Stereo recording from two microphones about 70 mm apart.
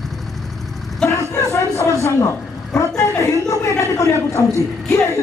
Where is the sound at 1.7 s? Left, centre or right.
Left.